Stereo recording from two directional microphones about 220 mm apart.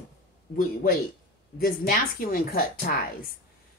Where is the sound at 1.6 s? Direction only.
40° left (ahead or behind).